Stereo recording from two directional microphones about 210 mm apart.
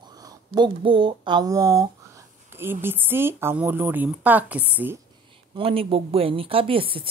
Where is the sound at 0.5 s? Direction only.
25° right (ahead or behind).